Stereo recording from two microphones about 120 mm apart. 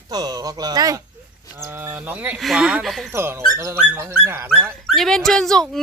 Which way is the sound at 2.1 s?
10° right (ahead or behind).